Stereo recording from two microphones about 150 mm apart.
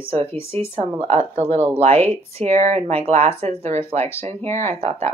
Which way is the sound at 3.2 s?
15° left (ahead or behind).